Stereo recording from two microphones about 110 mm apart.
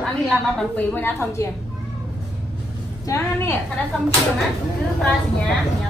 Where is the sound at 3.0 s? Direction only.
30° left (ahead or behind).